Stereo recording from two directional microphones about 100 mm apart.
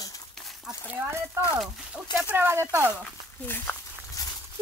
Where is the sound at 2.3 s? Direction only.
25° right (ahead or behind).